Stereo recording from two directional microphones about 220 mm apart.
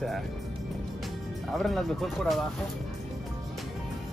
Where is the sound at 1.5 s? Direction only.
Centre (ahead or behind).